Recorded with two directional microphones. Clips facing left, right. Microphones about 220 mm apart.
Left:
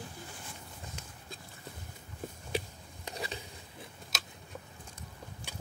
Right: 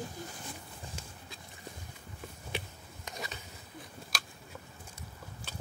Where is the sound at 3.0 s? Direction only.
30° left (ahead or behind).